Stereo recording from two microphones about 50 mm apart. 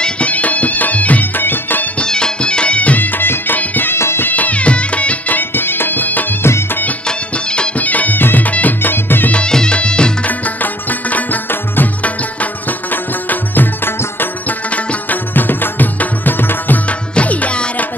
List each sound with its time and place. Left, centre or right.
0.0 s music: left
2.0 s music: centre
3.0 s music: left
3.9 s music: left
4.3 s music: left
5.4 s music: left
6.4 s music: left
7.1 s music: centre
7.7 s music: left
9.3 s music: centre
10.2 s music: left
17.1 s music: left